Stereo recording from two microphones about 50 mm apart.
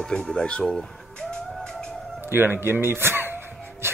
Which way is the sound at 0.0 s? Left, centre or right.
Centre.